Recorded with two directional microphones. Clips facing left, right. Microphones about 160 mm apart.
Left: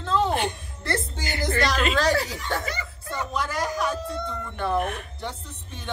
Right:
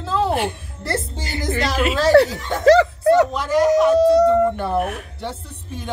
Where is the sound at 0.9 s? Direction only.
30° right (ahead or behind).